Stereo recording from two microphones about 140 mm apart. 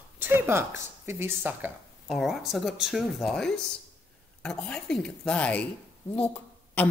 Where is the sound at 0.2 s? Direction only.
15° right (ahead or behind).